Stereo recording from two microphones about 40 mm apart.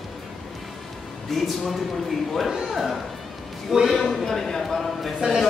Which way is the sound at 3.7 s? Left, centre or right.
Centre.